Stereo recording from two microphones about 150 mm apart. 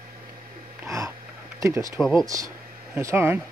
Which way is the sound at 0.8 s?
20° right (ahead or behind).